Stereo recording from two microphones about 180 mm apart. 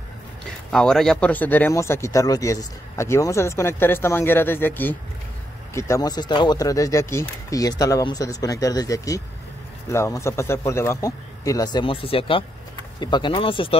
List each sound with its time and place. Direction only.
0.7 s speech: 5° left (ahead or behind); by 13.7 s 30° left (ahead or behind)